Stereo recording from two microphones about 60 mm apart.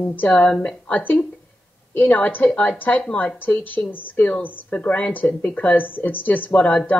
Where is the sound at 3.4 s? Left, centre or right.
Left.